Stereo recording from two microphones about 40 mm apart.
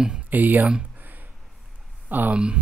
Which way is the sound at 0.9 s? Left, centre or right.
Right.